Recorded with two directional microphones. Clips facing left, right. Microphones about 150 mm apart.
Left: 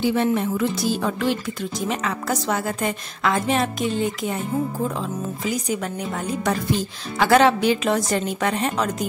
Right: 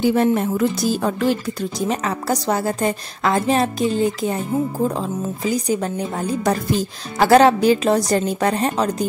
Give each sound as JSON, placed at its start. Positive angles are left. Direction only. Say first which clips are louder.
{"t": 0.0, "sound": "speech", "louder": "right 4 dB", "side_deg": -40}